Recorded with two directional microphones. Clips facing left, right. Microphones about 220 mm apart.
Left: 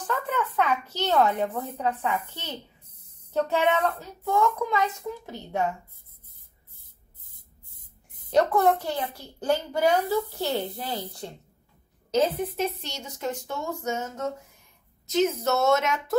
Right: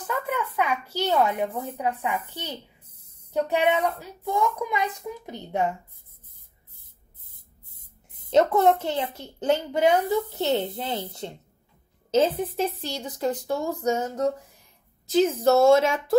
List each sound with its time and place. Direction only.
0.0 s a woman's voice: 10° right (ahead or behind)
7.8 s a child's voice: 25° right (ahead or behind)
12.4 s speech: 30° right (ahead or behind)